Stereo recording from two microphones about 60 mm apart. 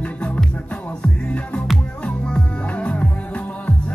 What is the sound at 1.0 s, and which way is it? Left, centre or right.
Music, centre.